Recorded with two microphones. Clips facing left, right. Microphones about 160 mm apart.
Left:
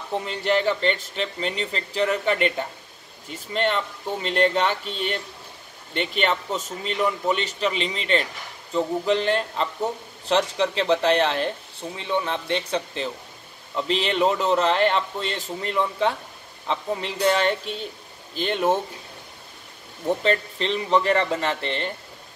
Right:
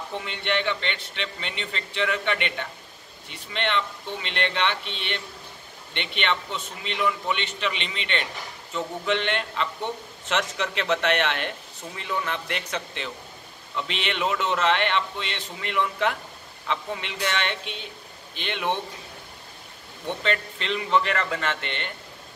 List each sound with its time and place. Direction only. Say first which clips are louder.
0.1 s a man's voice: left 6 dB; 35° left (ahead or behind)
20.1 s a man's voice: left 5 dB; 35° left (ahead or behind)